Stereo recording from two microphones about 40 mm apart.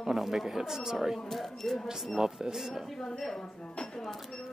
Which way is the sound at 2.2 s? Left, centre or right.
Centre.